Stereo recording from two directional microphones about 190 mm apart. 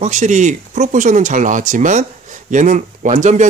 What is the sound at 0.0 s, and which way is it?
Speech, 40° right (ahead or behind).